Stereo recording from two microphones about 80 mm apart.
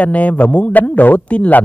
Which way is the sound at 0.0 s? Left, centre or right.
Centre.